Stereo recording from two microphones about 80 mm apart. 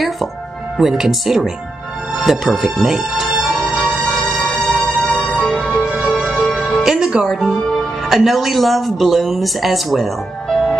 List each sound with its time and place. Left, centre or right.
0.7 s speech: centre
2.2 s music: centre
5.9 s music: centre